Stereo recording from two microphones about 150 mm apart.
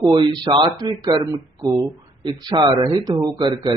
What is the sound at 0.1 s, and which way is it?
A man's voice, 30° right (ahead or behind).